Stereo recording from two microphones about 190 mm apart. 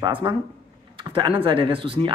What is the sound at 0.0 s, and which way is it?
Speech, 25° right (ahead or behind).